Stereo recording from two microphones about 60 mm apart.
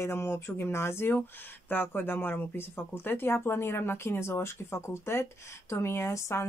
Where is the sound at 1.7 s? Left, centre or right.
Left.